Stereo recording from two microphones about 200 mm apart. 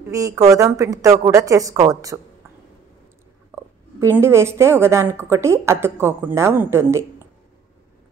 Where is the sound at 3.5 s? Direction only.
10° right (ahead or behind).